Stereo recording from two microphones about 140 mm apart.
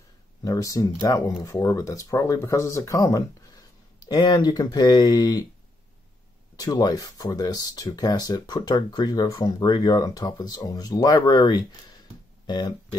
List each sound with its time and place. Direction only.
0.4 s speech: 25° left (ahead or behind)
6.6 s speech: 25° left (ahead or behind)